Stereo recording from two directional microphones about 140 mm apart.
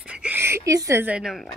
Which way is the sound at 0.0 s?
5° right (ahead or behind).